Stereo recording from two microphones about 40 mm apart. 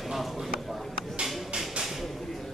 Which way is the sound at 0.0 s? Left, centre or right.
Centre.